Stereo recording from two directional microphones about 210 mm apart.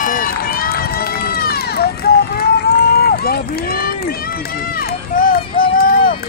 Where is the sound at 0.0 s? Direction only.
40° left (ahead or behind).